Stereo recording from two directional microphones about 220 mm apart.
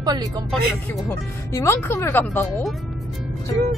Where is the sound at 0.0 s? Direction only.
20° right (ahead or behind).